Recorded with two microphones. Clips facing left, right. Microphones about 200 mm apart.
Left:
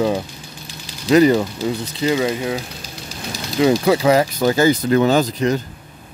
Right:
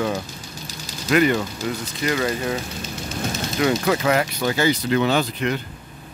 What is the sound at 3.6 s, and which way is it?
Speech, 25° left (ahead or behind).